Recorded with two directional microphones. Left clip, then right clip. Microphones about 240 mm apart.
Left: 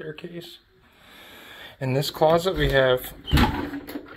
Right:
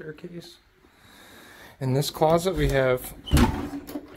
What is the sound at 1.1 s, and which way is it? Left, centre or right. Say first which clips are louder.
Speech: left 4 dB; centre.